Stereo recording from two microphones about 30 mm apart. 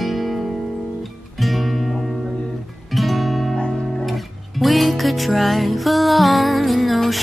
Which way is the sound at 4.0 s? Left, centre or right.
Centre.